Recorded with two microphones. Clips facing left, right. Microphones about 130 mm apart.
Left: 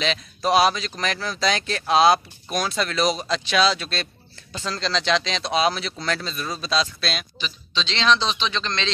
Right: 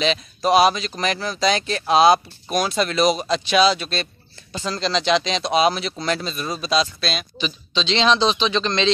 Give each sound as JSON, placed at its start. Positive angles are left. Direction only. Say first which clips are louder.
{"t": 0.0, "sound": "speech", "louder": "right 3 dB", "side_deg": -5}
{"t": 7.3, "sound": "a man's voice", "louder": "right 5 dB", "side_deg": -20}